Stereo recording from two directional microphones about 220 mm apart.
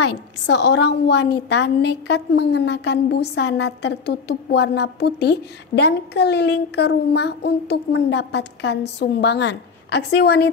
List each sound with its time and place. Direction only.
0.5 s a woman's voice: 50° left (ahead or behind)